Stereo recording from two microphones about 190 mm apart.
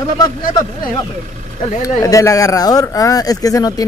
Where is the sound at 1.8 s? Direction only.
15° left (ahead or behind).